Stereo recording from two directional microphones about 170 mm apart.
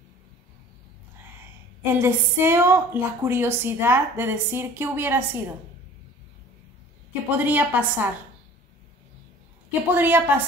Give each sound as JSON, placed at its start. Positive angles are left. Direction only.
{"t": 2.0, "sound": "a woman's voice", "side_deg": -15}
{"t": 7.2, "sound": "a woman's voice", "side_deg": -10}
{"t": 9.8, "sound": "a woman's voice", "side_deg": -10}